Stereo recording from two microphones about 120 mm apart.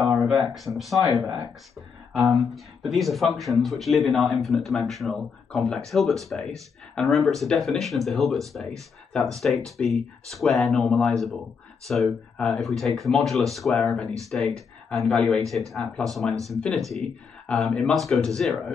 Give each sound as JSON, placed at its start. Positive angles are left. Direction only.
{"t": 0.2, "sound": "a sound", "side_deg": -5}
{"t": 0.7, "sound": "speech", "side_deg": 0}
{"t": 2.1, "sound": "speech", "side_deg": 0}